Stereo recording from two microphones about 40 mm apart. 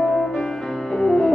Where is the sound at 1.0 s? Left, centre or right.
Centre.